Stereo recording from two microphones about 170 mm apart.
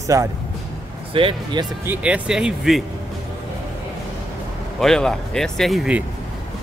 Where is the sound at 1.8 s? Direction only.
5° right (ahead or behind).